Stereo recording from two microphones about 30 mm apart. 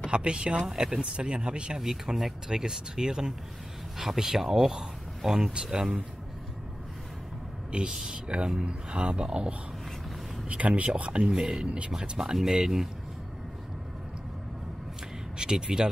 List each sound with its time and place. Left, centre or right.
0.1 s speech: right
0.6 s speech: centre
1.1 s speech: right
1.8 s speech: centre
2.5 s speech: right
4.0 s speech: centre
8.0 s speech: right
9.2 s speech: right
10.6 s speech: right
11.2 s speech: right
12.2 s speech: centre
15.5 s speech: centre